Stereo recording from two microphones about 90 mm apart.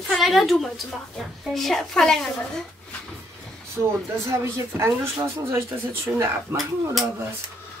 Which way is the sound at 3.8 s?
30° right (ahead or behind).